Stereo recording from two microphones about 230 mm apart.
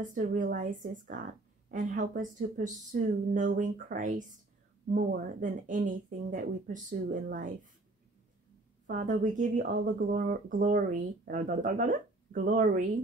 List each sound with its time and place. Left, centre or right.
0.0 s speech: right
8.8 s speech: right